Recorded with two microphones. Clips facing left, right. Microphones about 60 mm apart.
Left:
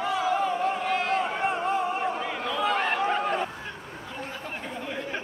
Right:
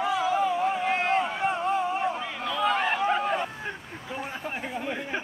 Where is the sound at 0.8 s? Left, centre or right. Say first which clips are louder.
Right 1 dB; right.